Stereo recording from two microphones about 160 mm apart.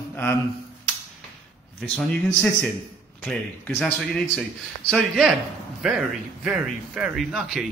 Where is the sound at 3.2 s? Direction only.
5° left (ahead or behind).